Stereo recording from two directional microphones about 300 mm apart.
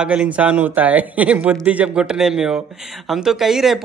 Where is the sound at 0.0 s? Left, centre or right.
Centre.